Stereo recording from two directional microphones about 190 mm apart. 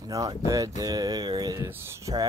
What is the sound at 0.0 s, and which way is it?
Speech, 20° right (ahead or behind).